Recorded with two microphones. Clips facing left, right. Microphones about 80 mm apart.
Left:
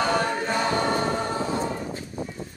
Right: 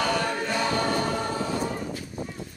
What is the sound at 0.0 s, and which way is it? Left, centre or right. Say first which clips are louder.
Choir: left 2 dB; left.